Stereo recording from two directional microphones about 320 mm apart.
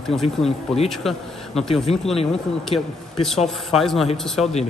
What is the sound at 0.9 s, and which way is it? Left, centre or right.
Speech, centre.